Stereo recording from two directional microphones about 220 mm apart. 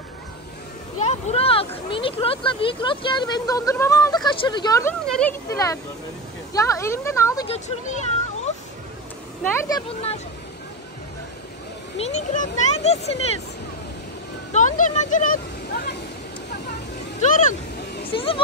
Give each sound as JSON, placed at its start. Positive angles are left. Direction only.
{"t": 0.9, "sound": "a sound", "side_deg": 30}
{"t": 1.9, "sound": "speech", "side_deg": 25}
{"t": 7.4, "sound": "a child's voice", "side_deg": 30}
{"t": 9.5, "sound": "speech", "side_deg": 15}
{"t": 12.0, "sound": "a child's voice", "side_deg": 30}
{"t": 14.5, "sound": "vehicle", "side_deg": 35}
{"t": 17.2, "sound": "speech", "side_deg": 35}
{"t": 18.1, "sound": "speech", "side_deg": 25}